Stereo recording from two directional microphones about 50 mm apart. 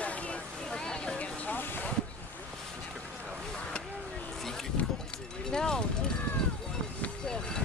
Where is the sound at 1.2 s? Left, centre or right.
Left.